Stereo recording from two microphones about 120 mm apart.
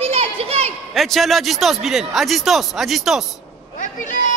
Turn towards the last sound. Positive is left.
turn(degrees=90)